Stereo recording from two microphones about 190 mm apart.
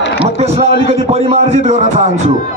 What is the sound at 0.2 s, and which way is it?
A man's voice, 30° right (ahead or behind).